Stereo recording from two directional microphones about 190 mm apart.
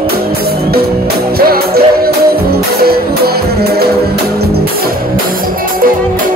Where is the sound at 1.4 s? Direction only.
55° right (ahead or behind).